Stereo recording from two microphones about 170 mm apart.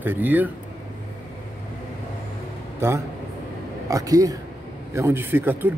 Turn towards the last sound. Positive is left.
turn(degrees=-10)  # may be behind; listen again after turning